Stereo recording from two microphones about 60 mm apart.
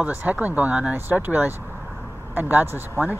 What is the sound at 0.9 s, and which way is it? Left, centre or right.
Speech, right.